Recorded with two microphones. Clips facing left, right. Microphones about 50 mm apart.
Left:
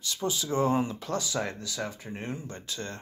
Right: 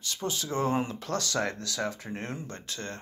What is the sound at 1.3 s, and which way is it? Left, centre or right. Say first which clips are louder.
Speech: right 2 dB; right.